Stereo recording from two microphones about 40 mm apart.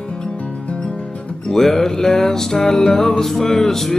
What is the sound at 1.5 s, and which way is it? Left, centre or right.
Music, centre.